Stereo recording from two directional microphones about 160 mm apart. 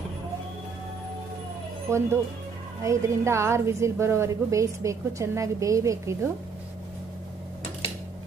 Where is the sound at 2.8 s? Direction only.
20° right (ahead or behind).